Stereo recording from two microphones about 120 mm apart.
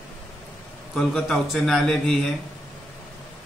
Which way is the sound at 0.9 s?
5° left (ahead or behind).